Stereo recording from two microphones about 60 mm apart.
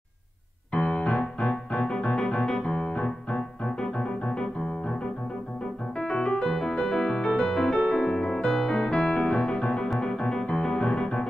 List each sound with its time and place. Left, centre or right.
0.7 s music: centre
5.9 s music: centre